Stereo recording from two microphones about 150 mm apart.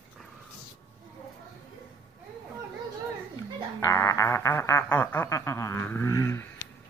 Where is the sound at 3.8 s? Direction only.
20° left (ahead or behind).